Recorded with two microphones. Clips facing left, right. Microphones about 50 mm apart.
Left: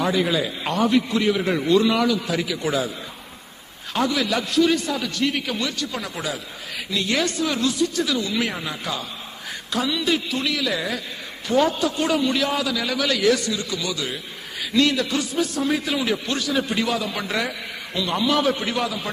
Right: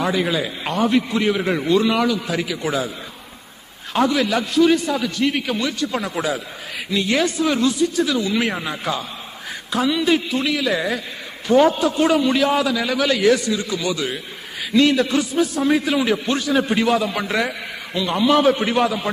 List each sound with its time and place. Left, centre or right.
0.0 s a man's voice: centre
3.9 s a man's voice: centre
6.9 s a man's voice: centre
12.5 s a man's voice: right
18.3 s speech: right